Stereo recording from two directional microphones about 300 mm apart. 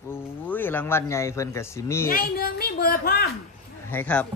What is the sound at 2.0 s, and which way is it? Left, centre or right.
A woman's voice, left.